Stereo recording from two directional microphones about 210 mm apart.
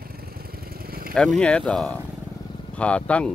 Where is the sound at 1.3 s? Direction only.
5° left (ahead or behind).